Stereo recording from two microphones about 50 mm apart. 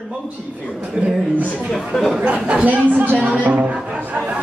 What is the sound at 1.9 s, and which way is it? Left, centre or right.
Speech, centre.